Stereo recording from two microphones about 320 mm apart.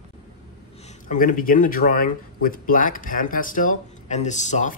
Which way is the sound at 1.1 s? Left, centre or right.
Left.